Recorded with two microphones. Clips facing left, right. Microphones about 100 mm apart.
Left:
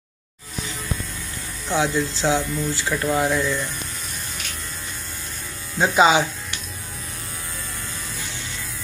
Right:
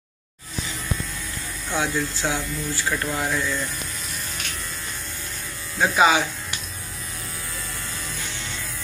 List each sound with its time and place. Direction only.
1.7 s speech: 20° left (ahead or behind)
5.8 s speech: 25° left (ahead or behind)